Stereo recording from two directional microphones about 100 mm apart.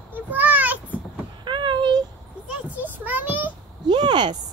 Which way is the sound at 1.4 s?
50° right (ahead or behind).